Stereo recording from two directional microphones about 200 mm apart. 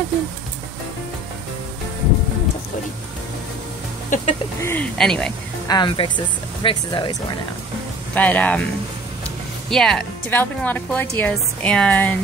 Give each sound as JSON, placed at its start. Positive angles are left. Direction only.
{"t": 4.1, "sound": "chicken", "side_deg": 40}
{"t": 4.6, "sound": "a woman's voice", "side_deg": 10}
{"t": 5.7, "sound": "speech", "side_deg": 25}
{"t": 8.1, "sound": "a woman's voice", "side_deg": 5}
{"t": 9.7, "sound": "a woman's voice", "side_deg": 5}